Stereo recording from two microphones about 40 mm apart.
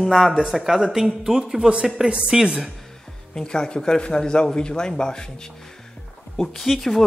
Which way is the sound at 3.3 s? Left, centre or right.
Centre.